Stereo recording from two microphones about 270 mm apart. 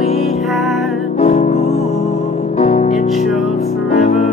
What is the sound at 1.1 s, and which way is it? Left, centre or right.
Music, left.